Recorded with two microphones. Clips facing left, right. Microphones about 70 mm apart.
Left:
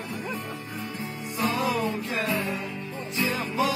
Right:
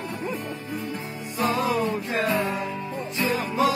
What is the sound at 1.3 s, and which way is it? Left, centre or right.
Music, right.